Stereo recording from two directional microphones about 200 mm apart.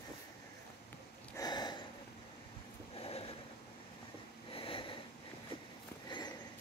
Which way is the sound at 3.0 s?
30° left (ahead or behind).